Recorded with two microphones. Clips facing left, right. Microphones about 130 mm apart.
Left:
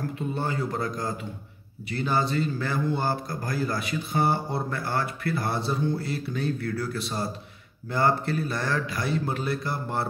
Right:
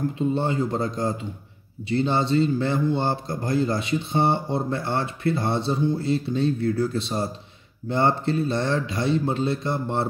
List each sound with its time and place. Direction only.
0.3 s speech: 25° right (ahead or behind)